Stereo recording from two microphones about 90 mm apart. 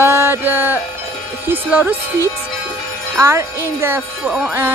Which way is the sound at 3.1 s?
30° right (ahead or behind).